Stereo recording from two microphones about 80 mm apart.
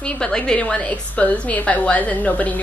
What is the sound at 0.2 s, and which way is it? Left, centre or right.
A woman's voice, centre.